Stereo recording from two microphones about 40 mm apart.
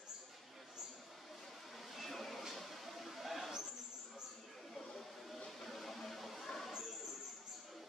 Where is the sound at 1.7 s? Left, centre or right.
Centre.